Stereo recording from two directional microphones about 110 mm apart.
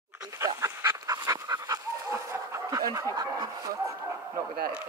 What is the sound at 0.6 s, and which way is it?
Dog, 30° right (ahead or behind).